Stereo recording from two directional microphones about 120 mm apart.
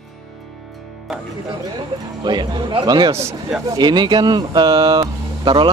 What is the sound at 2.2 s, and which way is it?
Speech, 35° right (ahead or behind).